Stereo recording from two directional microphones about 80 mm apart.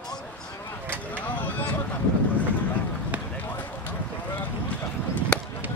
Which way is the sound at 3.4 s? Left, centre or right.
Left.